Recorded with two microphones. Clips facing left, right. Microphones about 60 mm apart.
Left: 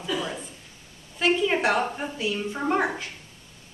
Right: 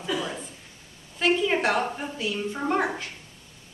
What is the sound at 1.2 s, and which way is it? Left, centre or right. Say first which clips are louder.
A woman's voice: even; centre.